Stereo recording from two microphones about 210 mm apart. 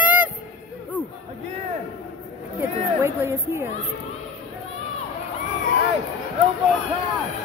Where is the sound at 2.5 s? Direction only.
10° right (ahead or behind).